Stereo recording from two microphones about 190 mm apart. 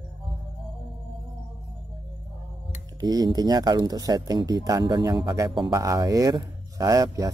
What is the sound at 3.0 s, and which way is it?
Speech, 20° right (ahead or behind).